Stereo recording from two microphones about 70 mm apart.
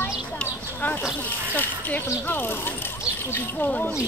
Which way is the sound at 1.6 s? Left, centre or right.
Left.